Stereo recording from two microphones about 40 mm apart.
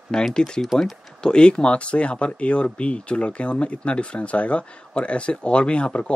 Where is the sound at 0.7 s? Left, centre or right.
Centre.